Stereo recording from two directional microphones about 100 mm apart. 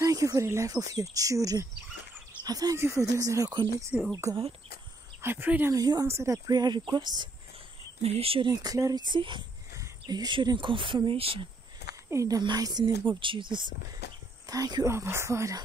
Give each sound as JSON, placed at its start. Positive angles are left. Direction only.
{"t": 0.0, "sound": "speech", "side_deg": -35}
{"t": 5.2, "sound": "speech", "side_deg": -20}
{"t": 5.7, "sound": "speech", "side_deg": -40}
{"t": 8.0, "sound": "speech", "side_deg": -85}
{"t": 8.5, "sound": "speech", "side_deg": -35}
{"t": 9.0, "sound": "speech", "side_deg": -55}
{"t": 9.8, "sound": "speech", "side_deg": -40}
{"t": 11.1, "sound": "speech", "side_deg": -65}
{"t": 12.1, "sound": "speech", "side_deg": -35}
{"t": 13.2, "sound": "speech", "side_deg": -55}
{"t": 14.4, "sound": "speech", "side_deg": -40}